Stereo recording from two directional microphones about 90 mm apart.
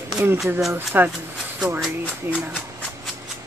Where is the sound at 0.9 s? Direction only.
20° right (ahead or behind).